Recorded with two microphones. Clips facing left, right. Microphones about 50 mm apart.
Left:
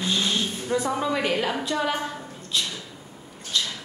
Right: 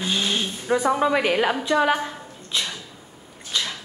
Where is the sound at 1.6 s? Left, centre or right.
Right.